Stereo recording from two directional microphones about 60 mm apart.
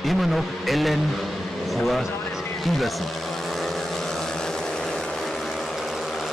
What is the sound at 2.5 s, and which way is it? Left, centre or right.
Vehicle, centre.